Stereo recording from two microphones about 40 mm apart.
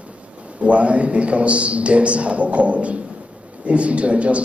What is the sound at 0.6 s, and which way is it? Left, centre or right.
A man's voice, right.